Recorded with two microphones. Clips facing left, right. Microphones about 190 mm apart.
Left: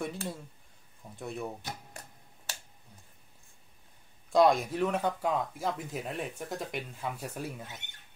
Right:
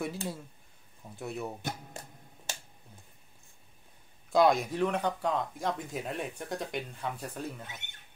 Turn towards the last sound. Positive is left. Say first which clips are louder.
# even
turn(degrees=10)  # may be behind; listen again after turning